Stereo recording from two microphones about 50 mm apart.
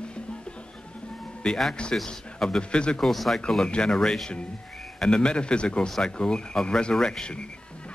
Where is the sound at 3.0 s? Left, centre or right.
Centre.